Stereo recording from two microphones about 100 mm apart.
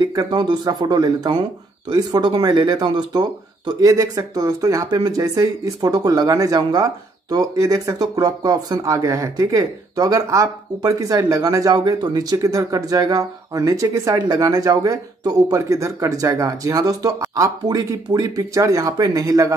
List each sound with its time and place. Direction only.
0.0 s speech: 45° right (ahead or behind)